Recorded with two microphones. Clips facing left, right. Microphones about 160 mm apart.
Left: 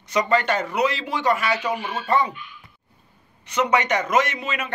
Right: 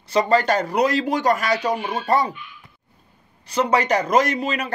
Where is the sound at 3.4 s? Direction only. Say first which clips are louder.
Right 1 dB; 35° right (ahead or behind).